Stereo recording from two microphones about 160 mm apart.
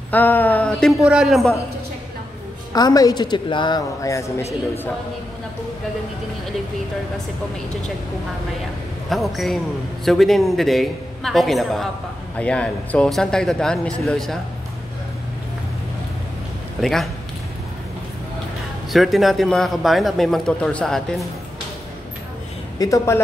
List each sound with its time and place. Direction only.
0.1 s a man's voice: 10° left (ahead or behind)
2.7 s a man's voice: 25° left (ahead or behind)
9.1 s a man's voice: centre (ahead or behind)
16.8 s a man's voice: centre (ahead or behind)
18.9 s a man's voice: centre (ahead or behind)
22.8 s a man's voice: 20° left (ahead or behind)